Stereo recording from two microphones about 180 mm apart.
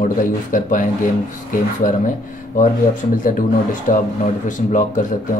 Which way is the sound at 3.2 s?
50° left (ahead or behind).